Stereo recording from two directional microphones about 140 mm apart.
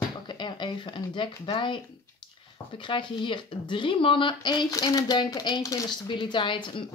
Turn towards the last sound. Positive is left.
turn(degrees=35)  # may be behind; listen again after turning